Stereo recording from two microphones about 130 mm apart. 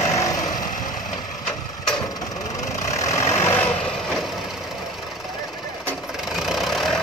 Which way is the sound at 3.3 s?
20° left (ahead or behind).